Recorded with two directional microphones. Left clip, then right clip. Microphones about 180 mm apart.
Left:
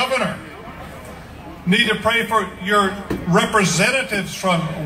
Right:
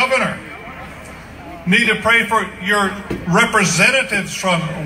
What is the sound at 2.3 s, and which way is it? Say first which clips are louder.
A man's voice: right 1 dB; 15° right (ahead or behind).